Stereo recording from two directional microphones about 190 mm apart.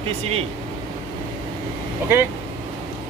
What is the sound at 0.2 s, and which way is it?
Speech, 35° right (ahead or behind).